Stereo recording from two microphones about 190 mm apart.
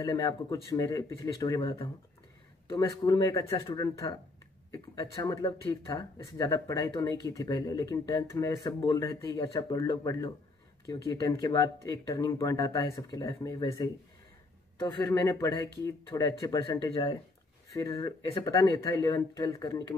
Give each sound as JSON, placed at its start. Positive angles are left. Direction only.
{"t": 0.0, "sound": "speech", "side_deg": 20}
{"t": 1.6, "sound": "speech", "side_deg": 30}
{"t": 14.8, "sound": "speech", "side_deg": 20}